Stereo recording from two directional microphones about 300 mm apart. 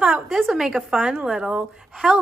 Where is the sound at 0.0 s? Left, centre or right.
Centre.